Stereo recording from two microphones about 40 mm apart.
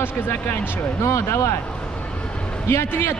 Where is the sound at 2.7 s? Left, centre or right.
Left.